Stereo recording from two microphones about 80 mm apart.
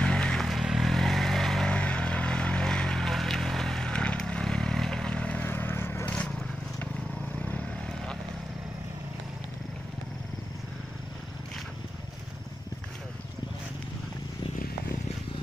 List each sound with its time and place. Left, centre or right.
0.0 s vehicle: centre; by 6.0 s left
6.0 s vehicle: centre
7.3 s vehicle: centre